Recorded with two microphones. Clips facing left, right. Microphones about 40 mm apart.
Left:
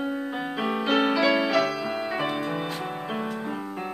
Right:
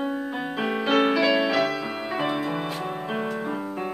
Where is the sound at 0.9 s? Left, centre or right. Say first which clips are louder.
Right 2 dB; centre.